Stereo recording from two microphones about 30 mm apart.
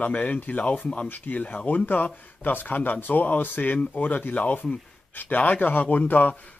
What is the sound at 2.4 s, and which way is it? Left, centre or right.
Speech, left.